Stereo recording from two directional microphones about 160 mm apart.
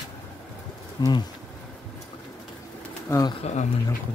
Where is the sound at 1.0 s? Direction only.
25° left (ahead or behind).